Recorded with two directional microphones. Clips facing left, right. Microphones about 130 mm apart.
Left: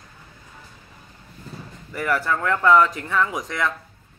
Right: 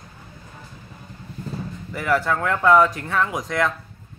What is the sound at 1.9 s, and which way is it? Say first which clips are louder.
Speech: right 2 dB; 10° right (ahead or behind).